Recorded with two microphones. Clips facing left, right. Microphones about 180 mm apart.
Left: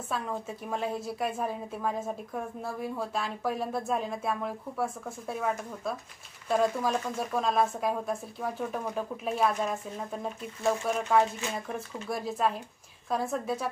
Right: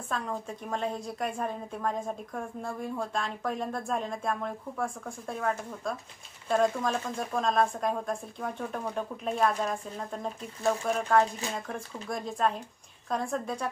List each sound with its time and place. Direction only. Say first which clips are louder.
0.1 s a woman's voice: even; 5° left (ahead or behind)